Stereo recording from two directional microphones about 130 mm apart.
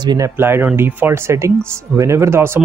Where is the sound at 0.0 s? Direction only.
35° right (ahead or behind).